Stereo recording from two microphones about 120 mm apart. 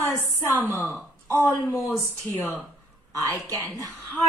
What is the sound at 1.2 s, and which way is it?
Speech, 20° left (ahead or behind).